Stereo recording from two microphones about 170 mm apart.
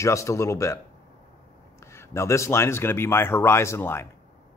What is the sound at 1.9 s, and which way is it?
Speech, 15° left (ahead or behind).